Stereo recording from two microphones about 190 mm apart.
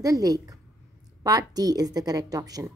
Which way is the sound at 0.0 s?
20° right (ahead or behind).